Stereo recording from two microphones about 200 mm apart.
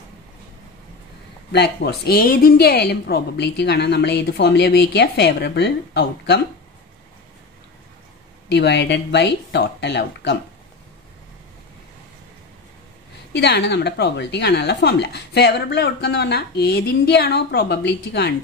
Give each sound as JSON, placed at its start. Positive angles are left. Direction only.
{"t": 1.5, "sound": "speech", "side_deg": 55}
{"t": 8.5, "sound": "speech", "side_deg": 55}
{"t": 13.3, "sound": "speech", "side_deg": 55}